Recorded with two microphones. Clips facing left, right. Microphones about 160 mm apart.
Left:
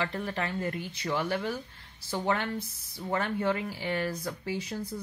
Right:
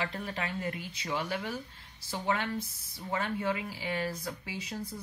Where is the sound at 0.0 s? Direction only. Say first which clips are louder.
Left 3 dB; 45° left (ahead or behind).